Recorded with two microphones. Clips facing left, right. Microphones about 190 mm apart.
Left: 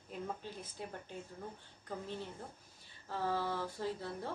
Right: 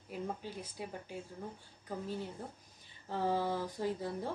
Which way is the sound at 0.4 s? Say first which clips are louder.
Right 2 dB; 10° right (ahead or behind).